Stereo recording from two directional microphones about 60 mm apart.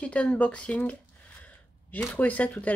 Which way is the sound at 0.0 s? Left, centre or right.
Left.